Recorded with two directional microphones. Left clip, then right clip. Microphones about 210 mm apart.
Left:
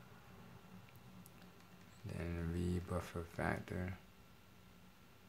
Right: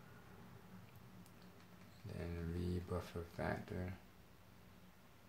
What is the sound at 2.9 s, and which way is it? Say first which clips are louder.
Speech: left 2 dB; 25° left (ahead or behind).